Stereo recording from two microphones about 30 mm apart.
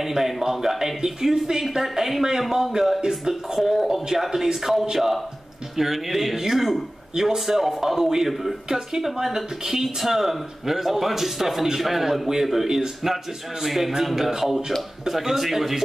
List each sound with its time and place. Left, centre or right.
0.0 s speech: centre